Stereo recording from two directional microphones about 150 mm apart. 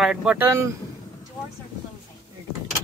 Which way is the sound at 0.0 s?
5° right (ahead or behind).